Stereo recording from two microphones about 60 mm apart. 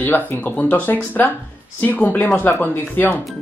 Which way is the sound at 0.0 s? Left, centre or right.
Left.